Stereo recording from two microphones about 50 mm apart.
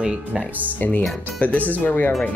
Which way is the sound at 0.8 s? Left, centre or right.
Left.